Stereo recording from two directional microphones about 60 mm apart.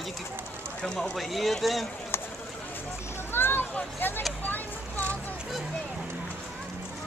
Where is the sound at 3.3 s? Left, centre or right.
Left.